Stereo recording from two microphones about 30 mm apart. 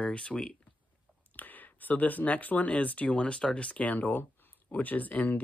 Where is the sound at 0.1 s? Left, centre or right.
Left.